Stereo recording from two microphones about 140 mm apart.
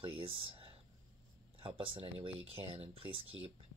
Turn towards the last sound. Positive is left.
turn(degrees=-40)  # may be behind; listen again after turning